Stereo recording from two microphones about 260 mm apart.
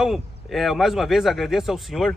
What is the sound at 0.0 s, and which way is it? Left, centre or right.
A man's voice, centre.